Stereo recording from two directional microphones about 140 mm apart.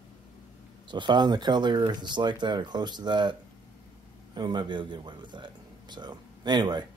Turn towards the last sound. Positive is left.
turn(degrees=-35)  # may be behind; listen again after turning